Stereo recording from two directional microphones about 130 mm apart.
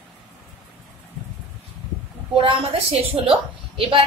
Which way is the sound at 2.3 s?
40° right (ahead or behind).